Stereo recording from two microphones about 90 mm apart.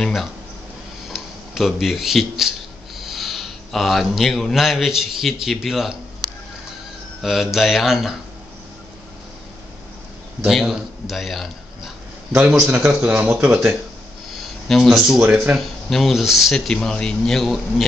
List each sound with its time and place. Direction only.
0.0 s speech: centre (ahead or behind)
7.2 s speech: 5° right (ahead or behind)
10.5 s a man's voice: 5° right (ahead or behind)
12.4 s speech: 15° right (ahead or behind)
14.3 s a sound: centre (ahead or behind)
15.2 s speech: 25° right (ahead or behind)
15.5 s speech: centre (ahead or behind)